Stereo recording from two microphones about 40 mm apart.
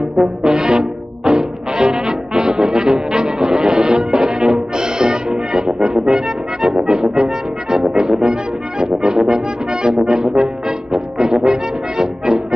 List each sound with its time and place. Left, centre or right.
0.2 s trombone: centre
7.7 s music: centre